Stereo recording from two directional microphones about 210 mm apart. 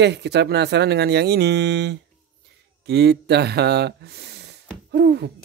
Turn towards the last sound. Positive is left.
turn(degrees=-55)  # may be behind; listen again after turning